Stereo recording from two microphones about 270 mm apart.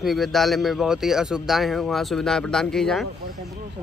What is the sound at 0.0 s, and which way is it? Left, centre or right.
A man's voice, centre.